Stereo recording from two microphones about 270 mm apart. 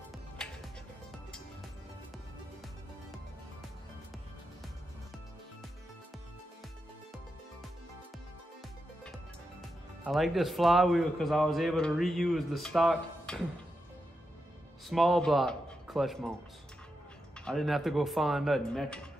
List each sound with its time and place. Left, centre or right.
9.6 s speech: centre
14.9 s speech: centre
17.5 s speech: centre